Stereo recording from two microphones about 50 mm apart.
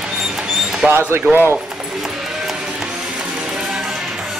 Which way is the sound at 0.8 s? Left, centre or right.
Right.